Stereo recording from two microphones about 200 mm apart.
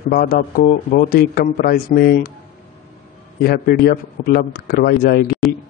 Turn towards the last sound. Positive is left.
turn(degrees=50)  # may be behind; listen again after turning